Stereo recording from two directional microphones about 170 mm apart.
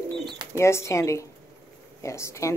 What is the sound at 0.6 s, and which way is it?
A woman's voice, 15° left (ahead or behind).